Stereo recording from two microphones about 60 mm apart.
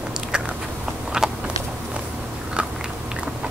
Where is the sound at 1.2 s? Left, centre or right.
Centre.